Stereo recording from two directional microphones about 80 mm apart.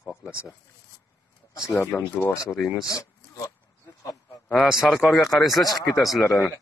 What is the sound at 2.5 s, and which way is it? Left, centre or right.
Speech, centre.